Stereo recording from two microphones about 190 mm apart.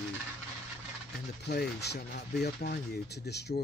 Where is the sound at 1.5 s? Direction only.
60° left (ahead or behind).